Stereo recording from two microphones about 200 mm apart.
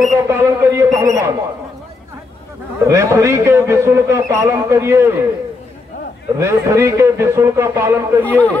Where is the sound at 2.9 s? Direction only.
15° right (ahead or behind).